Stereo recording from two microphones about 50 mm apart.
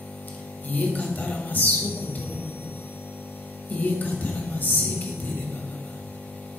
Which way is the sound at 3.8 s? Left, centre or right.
Left.